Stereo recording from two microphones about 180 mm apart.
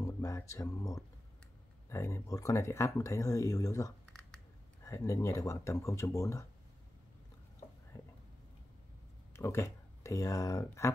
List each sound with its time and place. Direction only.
0.0 s music: 15° left (ahead or behind)
1.9 s speech: 15° left (ahead or behind)
9.3 s speech: 15° left (ahead or behind)